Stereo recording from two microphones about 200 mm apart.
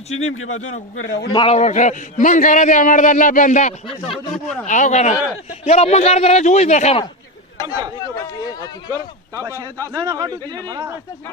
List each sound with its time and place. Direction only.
0.1 s a man's voice: 90° left; by 1.3 s 70° left (ahead or behind)
1.3 s a man's voice: 30° left (ahead or behind)
7.6 s speech: 20° right (ahead or behind)
9.3 s a man's voice: 15° right (ahead or behind)